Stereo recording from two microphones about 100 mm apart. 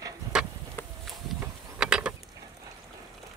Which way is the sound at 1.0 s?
5° right (ahead or behind).